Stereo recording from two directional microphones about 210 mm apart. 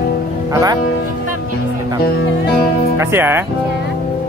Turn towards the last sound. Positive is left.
turn(degrees=-10)  # may be behind; listen again after turning